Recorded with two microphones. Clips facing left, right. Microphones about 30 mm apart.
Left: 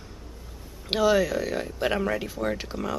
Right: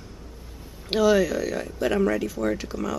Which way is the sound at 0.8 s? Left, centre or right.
Centre.